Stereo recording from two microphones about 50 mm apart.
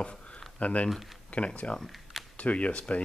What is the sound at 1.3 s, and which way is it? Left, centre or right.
Speech, left.